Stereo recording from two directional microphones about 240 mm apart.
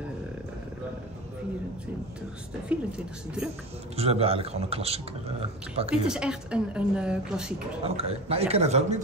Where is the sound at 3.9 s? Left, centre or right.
Right.